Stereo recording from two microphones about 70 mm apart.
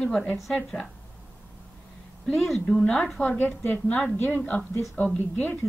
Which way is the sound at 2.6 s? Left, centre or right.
Centre.